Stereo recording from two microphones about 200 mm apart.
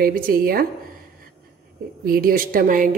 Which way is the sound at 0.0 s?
45° right (ahead or behind).